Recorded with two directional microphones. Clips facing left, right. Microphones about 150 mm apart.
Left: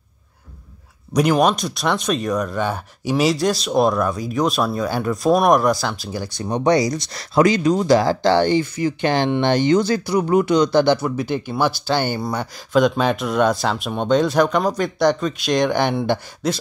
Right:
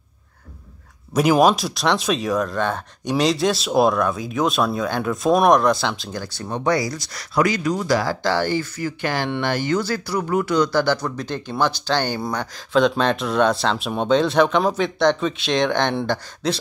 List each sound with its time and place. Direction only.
1.1 s speech: 5° right (ahead or behind)
6.2 s speech: 15° left (ahead or behind)